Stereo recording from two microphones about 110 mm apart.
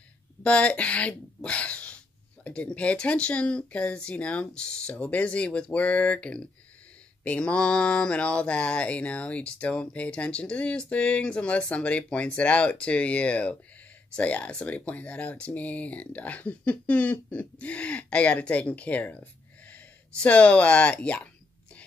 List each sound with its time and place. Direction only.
0.4 s speech: 10° left (ahead or behind)
2.4 s a sound: 10° left (ahead or behind)
19.7 s speech: 10° left (ahead or behind)